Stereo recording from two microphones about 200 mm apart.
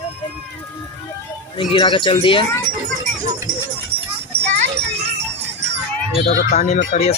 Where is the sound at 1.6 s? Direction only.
25° left (ahead or behind).